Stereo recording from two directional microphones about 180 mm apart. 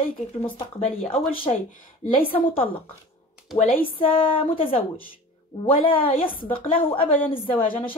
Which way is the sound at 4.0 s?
30° left (ahead or behind).